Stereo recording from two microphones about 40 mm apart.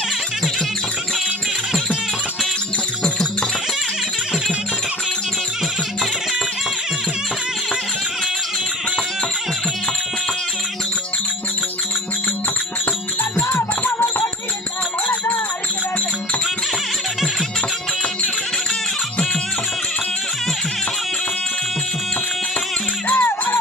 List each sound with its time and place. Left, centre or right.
23.1 s music: left